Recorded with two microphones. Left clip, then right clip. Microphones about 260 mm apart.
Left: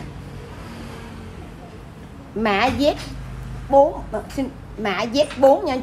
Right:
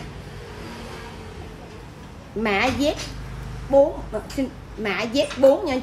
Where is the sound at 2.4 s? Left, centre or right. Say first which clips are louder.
Left 3 dB; centre.